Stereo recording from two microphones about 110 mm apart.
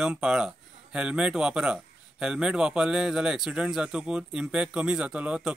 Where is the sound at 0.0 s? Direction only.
5° right (ahead or behind).